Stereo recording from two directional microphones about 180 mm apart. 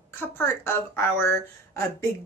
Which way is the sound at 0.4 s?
15° left (ahead or behind).